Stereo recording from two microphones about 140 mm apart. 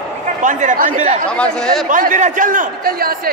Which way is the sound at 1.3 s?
5° left (ahead or behind).